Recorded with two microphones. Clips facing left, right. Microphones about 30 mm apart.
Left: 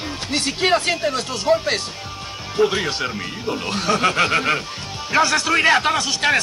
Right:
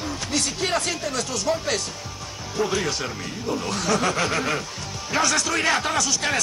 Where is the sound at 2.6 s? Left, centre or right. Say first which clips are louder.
Left 5 dB; left.